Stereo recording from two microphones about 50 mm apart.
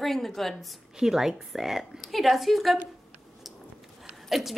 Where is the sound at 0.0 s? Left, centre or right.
Centre.